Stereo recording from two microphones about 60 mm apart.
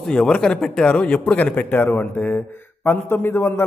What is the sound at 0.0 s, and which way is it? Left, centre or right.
A man's voice, centre.